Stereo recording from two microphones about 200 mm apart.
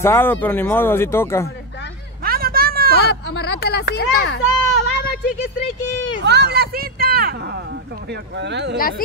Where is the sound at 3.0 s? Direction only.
55° left (ahead or behind).